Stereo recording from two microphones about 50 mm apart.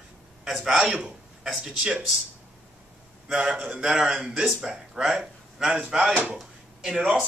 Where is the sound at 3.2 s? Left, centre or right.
Centre.